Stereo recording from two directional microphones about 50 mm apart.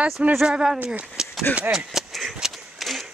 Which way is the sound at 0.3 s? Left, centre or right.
Centre.